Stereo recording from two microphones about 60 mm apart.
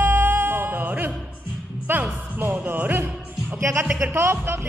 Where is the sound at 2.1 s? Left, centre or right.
Right.